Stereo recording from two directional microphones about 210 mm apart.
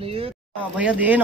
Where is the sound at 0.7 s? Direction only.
5° right (ahead or behind).